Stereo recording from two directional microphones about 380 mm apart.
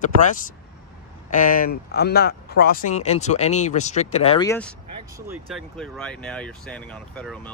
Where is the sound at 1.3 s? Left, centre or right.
Left.